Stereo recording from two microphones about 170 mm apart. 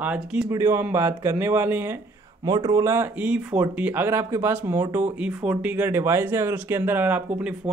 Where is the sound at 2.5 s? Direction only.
25° right (ahead or behind).